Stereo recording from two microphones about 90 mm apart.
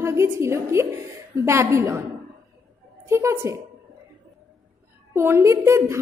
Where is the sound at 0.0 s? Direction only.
30° right (ahead or behind).